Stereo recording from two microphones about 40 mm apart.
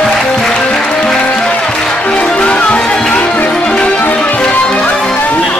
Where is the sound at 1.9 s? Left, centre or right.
Left.